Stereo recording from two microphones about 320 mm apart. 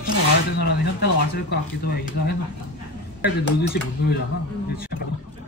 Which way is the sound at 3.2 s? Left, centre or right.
Left.